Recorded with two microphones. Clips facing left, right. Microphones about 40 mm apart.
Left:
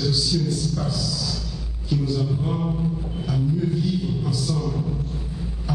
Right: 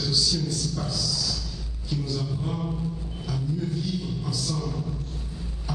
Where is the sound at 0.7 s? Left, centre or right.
Centre.